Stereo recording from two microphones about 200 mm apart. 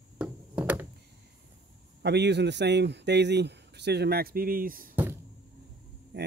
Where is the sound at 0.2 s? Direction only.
10° right (ahead or behind).